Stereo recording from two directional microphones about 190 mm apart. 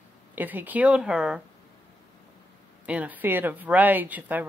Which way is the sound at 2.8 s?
5° right (ahead or behind).